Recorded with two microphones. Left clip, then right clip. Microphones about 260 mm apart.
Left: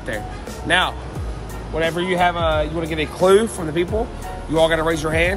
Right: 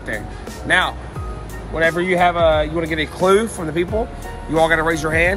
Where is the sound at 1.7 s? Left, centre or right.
Centre.